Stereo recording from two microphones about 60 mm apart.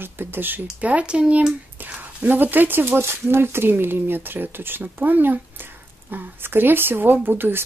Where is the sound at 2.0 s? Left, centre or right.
Right.